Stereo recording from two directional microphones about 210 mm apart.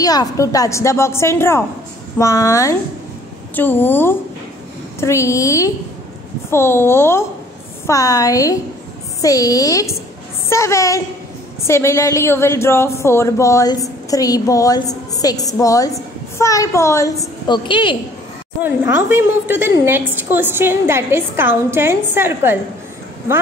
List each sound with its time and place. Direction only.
0.0 s a woman's voice: 20° left (ahead or behind)
18.6 s a woman's voice: 10° right (ahead or behind)